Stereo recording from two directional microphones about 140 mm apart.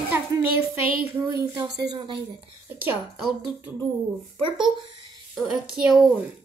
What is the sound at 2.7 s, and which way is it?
Speech, 15° right (ahead or behind).